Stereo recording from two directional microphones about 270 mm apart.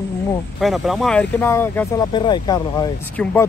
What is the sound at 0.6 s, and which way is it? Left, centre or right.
Speech, centre.